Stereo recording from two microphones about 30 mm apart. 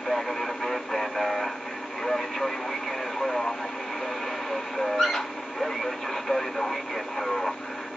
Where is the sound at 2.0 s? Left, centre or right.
Centre.